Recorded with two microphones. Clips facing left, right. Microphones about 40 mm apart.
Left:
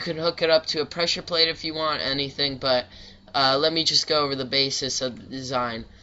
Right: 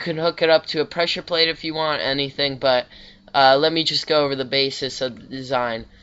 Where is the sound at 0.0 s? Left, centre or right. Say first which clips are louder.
Right 4 dB; right.